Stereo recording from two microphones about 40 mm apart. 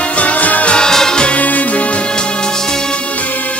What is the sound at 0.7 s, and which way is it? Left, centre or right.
Music, centre.